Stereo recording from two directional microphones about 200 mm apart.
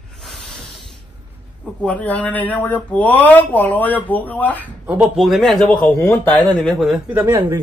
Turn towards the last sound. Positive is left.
turn(degrees=-10)  # may be behind; listen again after turning